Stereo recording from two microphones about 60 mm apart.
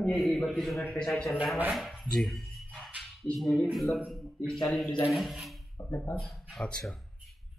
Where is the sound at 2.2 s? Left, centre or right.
Centre.